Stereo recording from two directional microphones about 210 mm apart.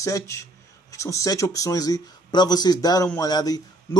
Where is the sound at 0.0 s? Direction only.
15° left (ahead or behind).